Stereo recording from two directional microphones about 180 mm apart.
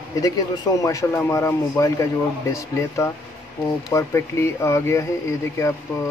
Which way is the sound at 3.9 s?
15° left (ahead or behind).